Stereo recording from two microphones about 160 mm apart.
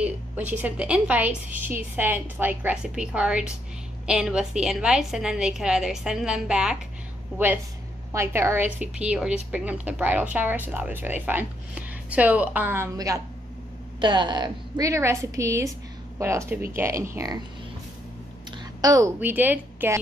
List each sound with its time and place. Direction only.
0.0 s a woman's voice: 10° right (ahead or behind)
18.8 s a woman's voice: 25° right (ahead or behind)
19.1 s speech: 10° right (ahead or behind)